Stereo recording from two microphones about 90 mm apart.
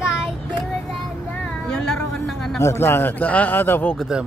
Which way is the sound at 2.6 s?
30° left (ahead or behind).